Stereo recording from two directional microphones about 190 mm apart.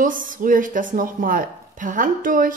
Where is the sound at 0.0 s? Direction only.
45° right (ahead or behind).